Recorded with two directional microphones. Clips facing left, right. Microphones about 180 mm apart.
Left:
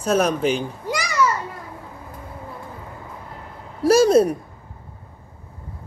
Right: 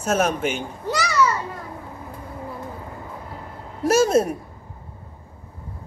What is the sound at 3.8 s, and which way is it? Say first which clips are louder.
Speech: left 3 dB; 35° left (ahead or behind).